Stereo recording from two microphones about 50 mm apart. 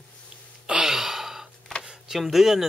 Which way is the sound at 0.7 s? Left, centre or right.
Centre.